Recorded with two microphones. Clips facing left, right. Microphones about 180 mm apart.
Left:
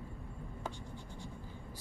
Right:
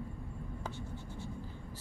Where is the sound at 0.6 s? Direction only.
15° left (ahead or behind).